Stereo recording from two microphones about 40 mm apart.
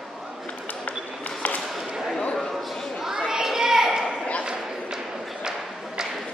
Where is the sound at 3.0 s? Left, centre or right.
Centre.